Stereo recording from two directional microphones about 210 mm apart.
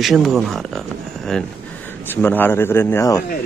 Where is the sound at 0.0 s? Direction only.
Centre (ahead or behind).